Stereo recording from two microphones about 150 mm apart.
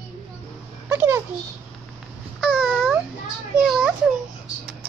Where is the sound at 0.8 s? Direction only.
20° right (ahead or behind).